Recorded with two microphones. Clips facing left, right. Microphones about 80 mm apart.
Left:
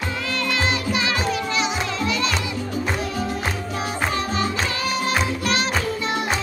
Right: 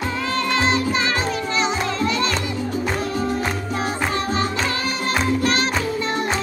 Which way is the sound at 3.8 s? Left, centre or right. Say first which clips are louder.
Right 1 dB; right.